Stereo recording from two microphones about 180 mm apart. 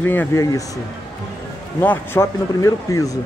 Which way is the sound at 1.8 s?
15° left (ahead or behind).